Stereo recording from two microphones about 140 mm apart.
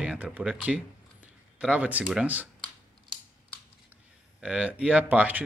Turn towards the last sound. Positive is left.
turn(degrees=-10)  # may be behind; listen again after turning